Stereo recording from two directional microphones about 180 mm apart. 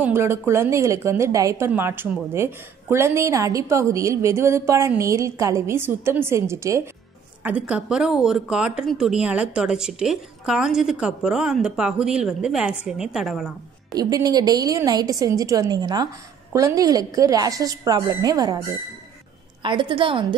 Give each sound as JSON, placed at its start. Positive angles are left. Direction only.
{"t": 0.0, "sound": "a woman's voice", "side_deg": -15}
{"t": 13.9, "sound": "a woman's voice", "side_deg": -20}
{"t": 19.6, "sound": "a woman's voice", "side_deg": -25}